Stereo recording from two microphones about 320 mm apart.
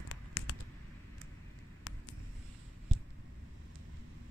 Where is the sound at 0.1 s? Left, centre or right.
Left.